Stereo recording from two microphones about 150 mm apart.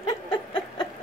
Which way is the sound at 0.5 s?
30° left (ahead or behind).